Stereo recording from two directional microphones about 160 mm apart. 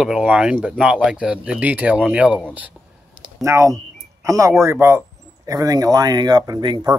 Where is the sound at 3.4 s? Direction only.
20° right (ahead or behind).